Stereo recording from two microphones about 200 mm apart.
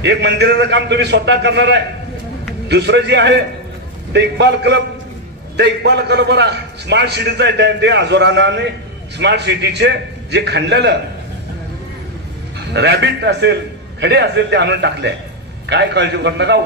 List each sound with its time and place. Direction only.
0.0 s a man's voice: 60° right (ahead or behind)
12.5 s a man's voice: 55° right (ahead or behind)